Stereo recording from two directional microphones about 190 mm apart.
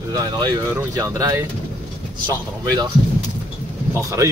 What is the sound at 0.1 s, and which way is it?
Speech, 20° right (ahead or behind).